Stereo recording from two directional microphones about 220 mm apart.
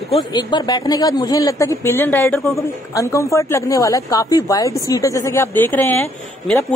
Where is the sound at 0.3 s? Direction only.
20° left (ahead or behind).